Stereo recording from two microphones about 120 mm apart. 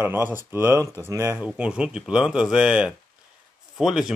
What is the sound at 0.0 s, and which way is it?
Speech, 15° right (ahead or behind).